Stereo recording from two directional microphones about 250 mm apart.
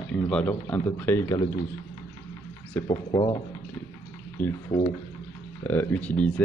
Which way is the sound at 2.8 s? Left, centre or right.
Centre.